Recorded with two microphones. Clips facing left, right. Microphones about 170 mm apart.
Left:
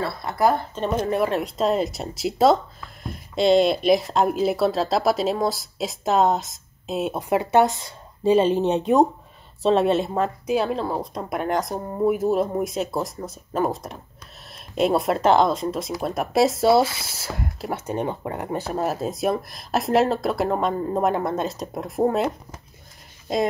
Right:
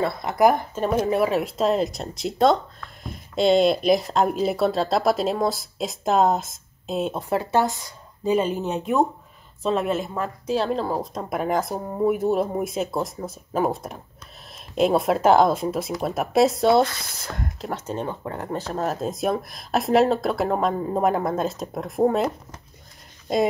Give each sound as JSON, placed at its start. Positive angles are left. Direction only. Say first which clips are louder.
{"t": 0.0, "sound": "speech", "louder": "right 2 dB", "side_deg": -20}
{"t": 7.2, "sound": "speech", "louder": "left 5 dB", "side_deg": 15}
{"t": 8.2, "sound": "speech", "louder": "left 4 dB", "side_deg": 30}
{"t": 10.5, "sound": "speech", "louder": "right 2 dB", "side_deg": 5}